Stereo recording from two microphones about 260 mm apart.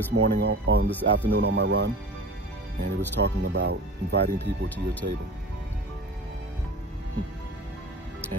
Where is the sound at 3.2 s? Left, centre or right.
Right.